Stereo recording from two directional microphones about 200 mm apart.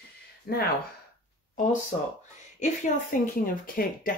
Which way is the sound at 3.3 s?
45° left (ahead or behind).